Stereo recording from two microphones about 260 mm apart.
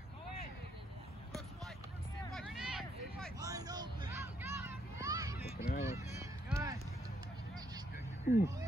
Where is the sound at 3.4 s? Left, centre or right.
Centre.